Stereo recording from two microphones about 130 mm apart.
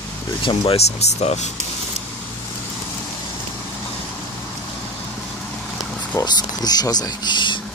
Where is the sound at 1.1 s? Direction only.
60° left (ahead or behind).